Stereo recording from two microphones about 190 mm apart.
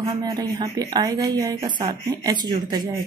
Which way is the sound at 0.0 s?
20° right (ahead or behind).